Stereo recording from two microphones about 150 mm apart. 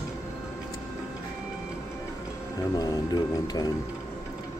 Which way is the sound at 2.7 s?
25° left (ahead or behind).